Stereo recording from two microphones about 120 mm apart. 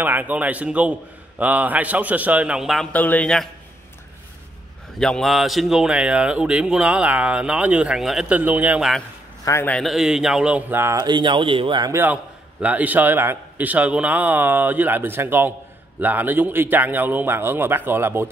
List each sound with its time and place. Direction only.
0.0 s a man's voice: 15° right (ahead or behind)
2.9 s a man's voice: 15° left (ahead or behind)
4.9 s a man's voice: 5° left (ahead or behind); by 8.8 s 15° right (ahead or behind)
9.4 s a man's voice: 25° left (ahead or behind)
9.7 s speech: centre (ahead or behind)
10.8 s a man's voice: 25° right (ahead or behind)
11.1 s speech: 40° right (ahead or behind)
11.8 s a man's voice: 20° right (ahead or behind)